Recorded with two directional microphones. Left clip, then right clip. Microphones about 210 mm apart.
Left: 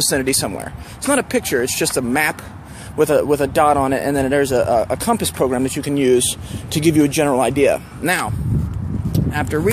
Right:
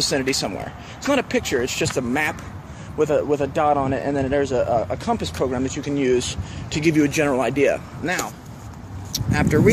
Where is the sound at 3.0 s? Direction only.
50° left (ahead or behind); by 7.8 s 25° left (ahead or behind).